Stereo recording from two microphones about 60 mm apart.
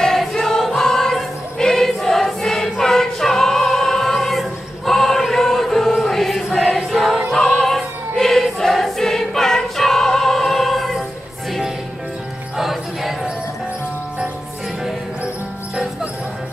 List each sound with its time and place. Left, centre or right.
0.0 s choir: centre
12.5 s music: centre
15.7 s music: centre